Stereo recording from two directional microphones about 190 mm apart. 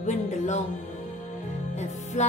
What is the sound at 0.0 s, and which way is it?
Speech, 40° left (ahead or behind).